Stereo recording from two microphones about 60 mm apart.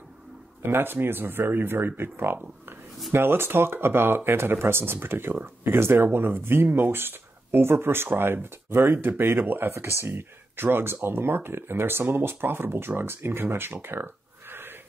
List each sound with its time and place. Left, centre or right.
0.6 s speech: right